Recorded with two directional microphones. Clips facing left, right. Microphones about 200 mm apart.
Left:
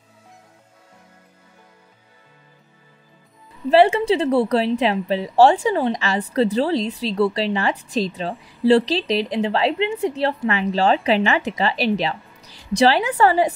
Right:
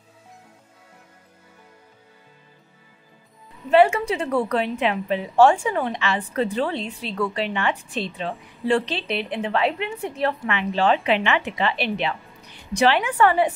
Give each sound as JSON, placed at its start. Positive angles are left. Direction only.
{"t": 3.7, "sound": "a woman's voice", "side_deg": 30}